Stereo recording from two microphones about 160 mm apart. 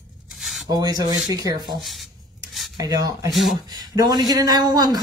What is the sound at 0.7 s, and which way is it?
A man's voice, 25° right (ahead or behind).